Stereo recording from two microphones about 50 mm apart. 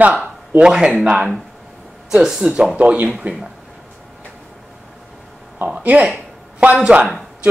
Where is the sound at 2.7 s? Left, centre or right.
Right.